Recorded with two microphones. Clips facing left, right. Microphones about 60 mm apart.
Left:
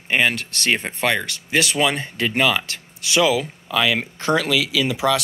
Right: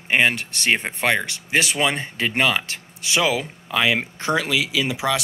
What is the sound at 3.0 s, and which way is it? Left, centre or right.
Speech, right.